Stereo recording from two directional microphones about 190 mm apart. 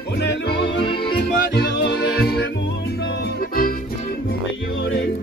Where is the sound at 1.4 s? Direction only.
55° left (ahead or behind).